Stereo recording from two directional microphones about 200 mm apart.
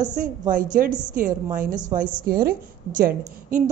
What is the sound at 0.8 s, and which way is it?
A woman's voice, 45° right (ahead or behind).